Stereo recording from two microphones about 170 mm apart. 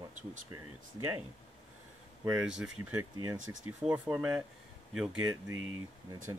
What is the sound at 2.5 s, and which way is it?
Speech, 5° right (ahead or behind).